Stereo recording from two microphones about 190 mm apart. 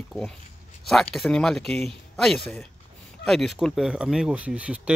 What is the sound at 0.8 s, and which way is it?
Speech, centre (ahead or behind).